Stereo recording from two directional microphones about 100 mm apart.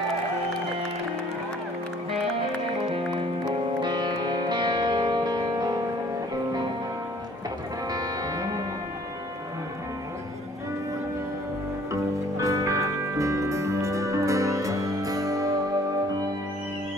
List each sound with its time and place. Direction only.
3.8 s music: 50° right (ahead or behind)
7.9 s music: 40° right (ahead or behind)
11.9 s music: 35° right (ahead or behind)